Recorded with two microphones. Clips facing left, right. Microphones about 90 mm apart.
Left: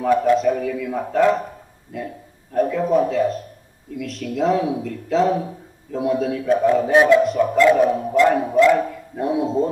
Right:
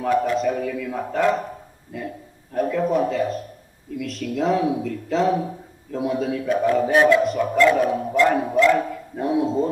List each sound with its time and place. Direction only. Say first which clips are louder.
0.0 s speech: left 4 dB; centre (ahead or behind)
6.9 s a man's voice: left 2 dB; 20° left (ahead or behind)
7.2 s speech: left 2 dB; centre (ahead or behind)